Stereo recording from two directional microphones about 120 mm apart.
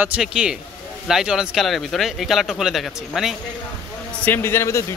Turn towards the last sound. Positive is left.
turn(degrees=20)  # may be behind; listen again after turning